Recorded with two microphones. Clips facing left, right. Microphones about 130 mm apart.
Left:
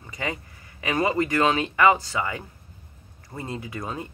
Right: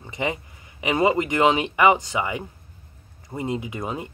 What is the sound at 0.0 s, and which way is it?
Speech, 20° right (ahead or behind).